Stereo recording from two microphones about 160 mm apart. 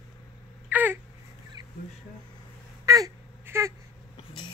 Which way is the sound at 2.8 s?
20° right (ahead or behind).